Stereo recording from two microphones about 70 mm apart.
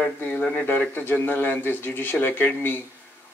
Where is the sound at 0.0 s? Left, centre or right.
Centre.